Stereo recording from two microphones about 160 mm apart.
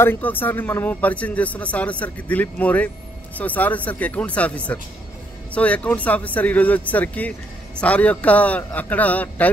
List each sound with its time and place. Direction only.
0.0 s a man's voice: 10° left (ahead or behind)